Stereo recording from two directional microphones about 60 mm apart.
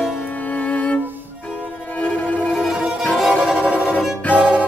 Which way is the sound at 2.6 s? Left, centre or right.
Centre.